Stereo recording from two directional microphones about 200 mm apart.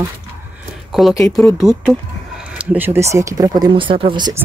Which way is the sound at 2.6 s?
10° right (ahead or behind).